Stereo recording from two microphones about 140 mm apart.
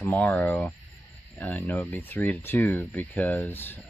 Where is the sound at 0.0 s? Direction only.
10° left (ahead or behind).